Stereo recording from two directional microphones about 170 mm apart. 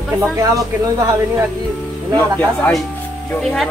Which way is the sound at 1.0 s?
20° right (ahead or behind).